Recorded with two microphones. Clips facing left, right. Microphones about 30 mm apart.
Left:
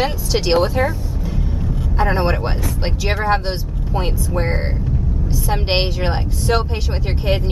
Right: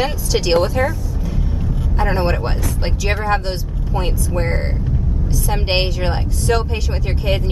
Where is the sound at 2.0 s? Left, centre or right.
Centre.